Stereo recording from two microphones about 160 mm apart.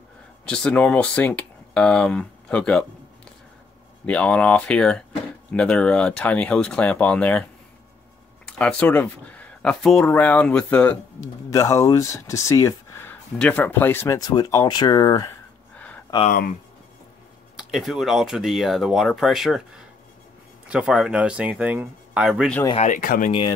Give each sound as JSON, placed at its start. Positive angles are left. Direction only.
{"t": 0.5, "sound": "speech", "side_deg": 5}
{"t": 4.0, "sound": "speech", "side_deg": 5}
{"t": 8.5, "sound": "speech", "side_deg": 5}
{"t": 11.5, "sound": "speech", "side_deg": 20}
{"t": 15.7, "sound": "a sound", "side_deg": 10}
{"t": 16.3, "sound": "speech", "side_deg": 60}
{"t": 17.6, "sound": "speech", "side_deg": -5}
{"t": 20.6, "sound": "speech", "side_deg": -5}
{"t": 22.8, "sound": "speech", "side_deg": 55}